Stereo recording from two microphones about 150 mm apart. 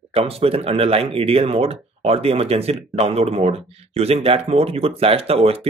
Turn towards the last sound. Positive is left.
turn(degrees=-40)  # may be behind; listen again after turning